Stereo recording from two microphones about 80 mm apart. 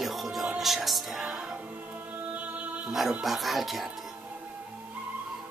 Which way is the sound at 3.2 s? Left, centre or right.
Centre.